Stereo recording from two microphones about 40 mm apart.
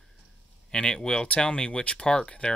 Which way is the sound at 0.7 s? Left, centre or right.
Left.